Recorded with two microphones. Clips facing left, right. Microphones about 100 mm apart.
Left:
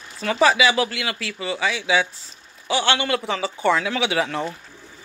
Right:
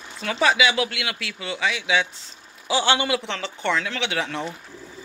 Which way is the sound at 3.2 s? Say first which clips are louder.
Left 6 dB; 5° left (ahead or behind).